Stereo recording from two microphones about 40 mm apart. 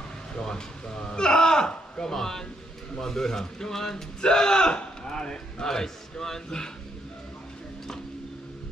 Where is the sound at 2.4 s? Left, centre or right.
Centre.